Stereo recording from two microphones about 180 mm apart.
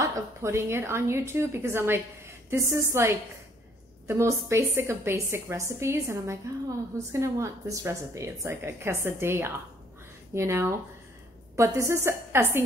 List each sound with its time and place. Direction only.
0.0 s a woman's voice: 15° right (ahead or behind)